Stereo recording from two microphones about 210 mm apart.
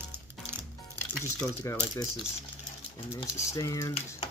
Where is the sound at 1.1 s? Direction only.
5° left (ahead or behind).